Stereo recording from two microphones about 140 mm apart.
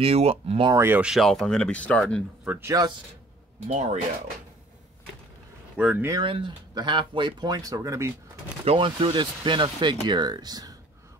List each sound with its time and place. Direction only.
0.0 s speech: 45° right (ahead or behind)
0.7 s speech: 20° right (ahead or behind)
1.1 s speech: centre (ahead or behind)
2.4 s speech: 10° right (ahead or behind)
3.6 s speech: 55° right (ahead or behind)
5.8 s speech: 5° right (ahead or behind)
6.0 s speech: 30° right (ahead or behind)
8.6 s speech: 40° right (ahead or behind)